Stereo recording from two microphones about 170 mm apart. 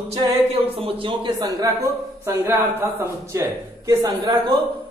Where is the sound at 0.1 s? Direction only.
35° right (ahead or behind).